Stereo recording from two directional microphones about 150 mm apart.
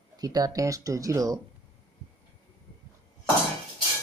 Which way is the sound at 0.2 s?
25° right (ahead or behind).